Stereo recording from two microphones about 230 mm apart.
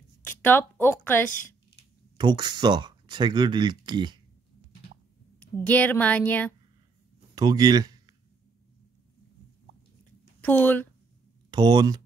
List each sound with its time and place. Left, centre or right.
0.2 s a woman's voice: centre
2.1 s speech: centre
5.4 s a woman's voice: centre
7.3 s a sound: centre
10.4 s a woman's voice: centre
11.5 s speech: centre